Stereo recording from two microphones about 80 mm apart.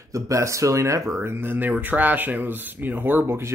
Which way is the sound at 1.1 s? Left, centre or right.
Right.